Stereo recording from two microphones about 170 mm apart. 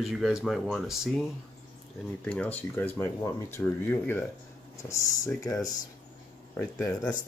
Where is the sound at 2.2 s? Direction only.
10° left (ahead or behind).